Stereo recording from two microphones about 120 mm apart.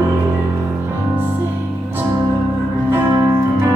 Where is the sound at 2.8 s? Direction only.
20° right (ahead or behind).